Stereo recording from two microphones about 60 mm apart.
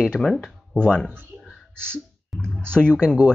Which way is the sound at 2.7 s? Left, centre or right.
Centre.